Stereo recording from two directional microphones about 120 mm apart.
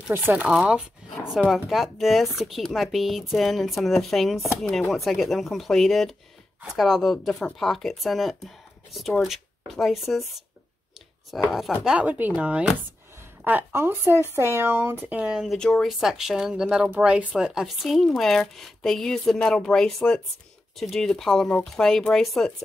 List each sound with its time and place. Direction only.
0.1 s speech: 20° right (ahead or behind)
0.5 s speech: 5° right (ahead or behind)
11.3 s speech: 5° left (ahead or behind)
11.8 s speech: 10° right (ahead or behind)